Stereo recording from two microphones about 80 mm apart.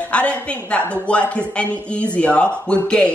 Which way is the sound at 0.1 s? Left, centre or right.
Centre.